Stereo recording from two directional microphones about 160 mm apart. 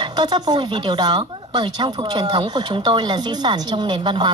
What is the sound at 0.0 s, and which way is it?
Speech, 25° right (ahead or behind).